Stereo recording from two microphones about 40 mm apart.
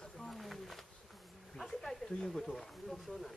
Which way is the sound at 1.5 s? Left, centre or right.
Centre.